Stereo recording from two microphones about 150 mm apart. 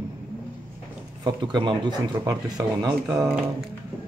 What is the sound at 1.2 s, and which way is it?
Speech, 30° right (ahead or behind).